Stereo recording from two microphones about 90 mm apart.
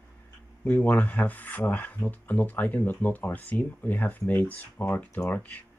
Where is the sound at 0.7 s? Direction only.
20° left (ahead or behind).